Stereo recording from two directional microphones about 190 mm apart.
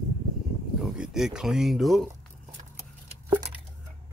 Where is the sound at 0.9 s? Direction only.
5° right (ahead or behind).